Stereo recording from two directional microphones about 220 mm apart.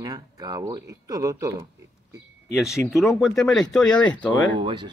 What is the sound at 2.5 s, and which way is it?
Speech, centre (ahead or behind).